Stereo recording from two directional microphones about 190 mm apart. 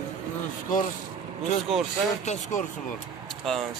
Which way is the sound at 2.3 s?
40° left (ahead or behind).